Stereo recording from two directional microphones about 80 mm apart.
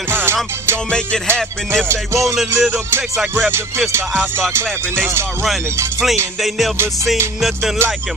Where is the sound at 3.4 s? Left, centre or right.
Right.